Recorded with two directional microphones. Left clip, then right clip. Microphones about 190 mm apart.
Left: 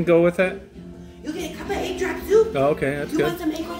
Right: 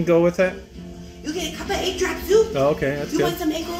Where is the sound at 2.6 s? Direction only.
5° right (ahead or behind).